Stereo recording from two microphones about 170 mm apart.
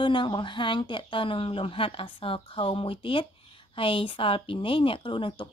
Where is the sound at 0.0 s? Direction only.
25° left (ahead or behind).